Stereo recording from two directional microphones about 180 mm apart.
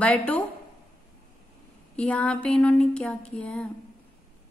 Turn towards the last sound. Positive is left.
turn(degrees=5)  # may be behind; listen again after turning